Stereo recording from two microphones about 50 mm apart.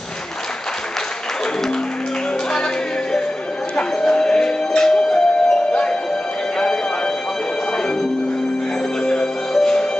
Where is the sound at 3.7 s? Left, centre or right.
Centre.